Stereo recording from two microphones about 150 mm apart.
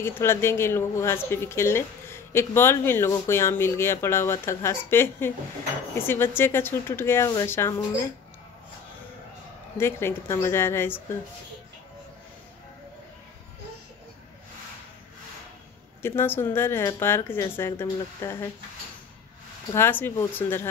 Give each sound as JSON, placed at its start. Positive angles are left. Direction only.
{"t": 0.0, "sound": "speech", "side_deg": 15}
{"t": 9.8, "sound": "speech", "side_deg": 15}
{"t": 16.0, "sound": "speech", "side_deg": 15}
{"t": 19.7, "sound": "speech", "side_deg": 15}